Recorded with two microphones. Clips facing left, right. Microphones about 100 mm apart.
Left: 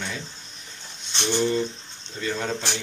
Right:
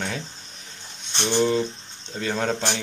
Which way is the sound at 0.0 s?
45° right (ahead or behind).